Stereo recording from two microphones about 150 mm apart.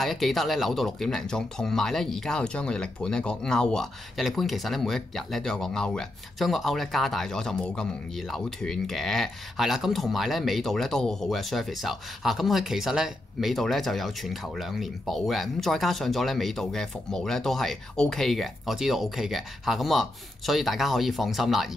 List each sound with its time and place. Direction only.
0.0 s speech: centre (ahead or behind)